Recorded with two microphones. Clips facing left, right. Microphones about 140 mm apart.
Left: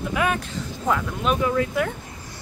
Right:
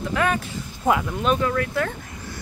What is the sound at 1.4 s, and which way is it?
Speech, 15° left (ahead or behind).